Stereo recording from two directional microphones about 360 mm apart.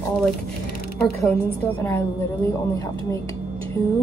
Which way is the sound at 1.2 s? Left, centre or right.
Centre.